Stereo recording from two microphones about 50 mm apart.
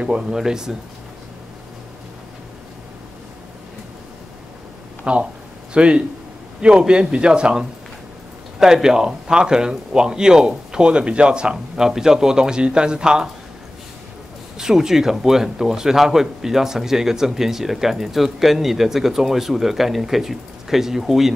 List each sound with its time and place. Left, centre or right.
0.0 s speech: centre
5.1 s speech: right
14.6 s speech: centre